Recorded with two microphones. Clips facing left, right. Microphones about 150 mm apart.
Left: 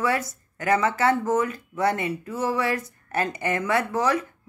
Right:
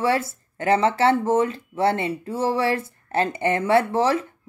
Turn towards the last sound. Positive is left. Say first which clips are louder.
# right 4 dB
turn(degrees=-30)  # may be behind; listen again after turning